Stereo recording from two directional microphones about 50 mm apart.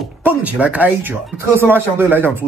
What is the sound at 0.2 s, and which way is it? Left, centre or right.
Speech, right.